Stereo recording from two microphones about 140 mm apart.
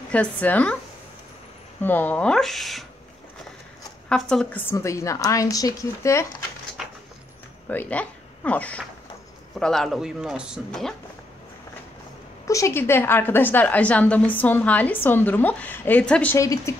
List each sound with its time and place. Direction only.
0.1 s a woman's voice: 10° left (ahead or behind)
1.8 s a woman's voice: 15° left (ahead or behind)
4.1 s a man's voice: 5° left (ahead or behind)
4.6 s a woman's voice: 20° left (ahead or behind)
7.6 s a man's voice: 10° left (ahead or behind)
12.4 s a woman's voice: 20° left (ahead or behind)
16.3 s a woman's voice: 20° left (ahead or behind)